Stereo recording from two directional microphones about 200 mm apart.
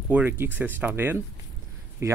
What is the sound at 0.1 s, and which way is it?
Speech, 10° right (ahead or behind).